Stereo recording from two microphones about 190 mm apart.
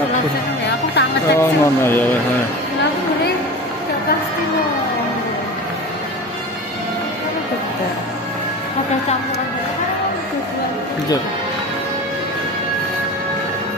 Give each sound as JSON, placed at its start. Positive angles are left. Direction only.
{"t": 0.7, "sound": "music", "side_deg": 65}
{"t": 1.4, "sound": "speech", "side_deg": 10}